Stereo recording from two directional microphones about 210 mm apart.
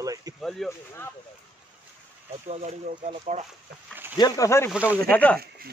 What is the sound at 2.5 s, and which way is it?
Speech, 30° right (ahead or behind).